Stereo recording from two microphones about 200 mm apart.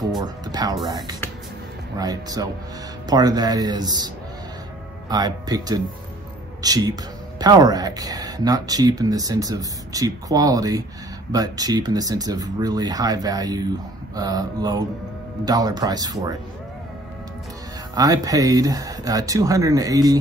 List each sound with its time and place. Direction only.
0.2 s speech: 20° right (ahead or behind)
5.1 s speech: 20° right (ahead or behind)
17.9 s speech: 20° right (ahead or behind)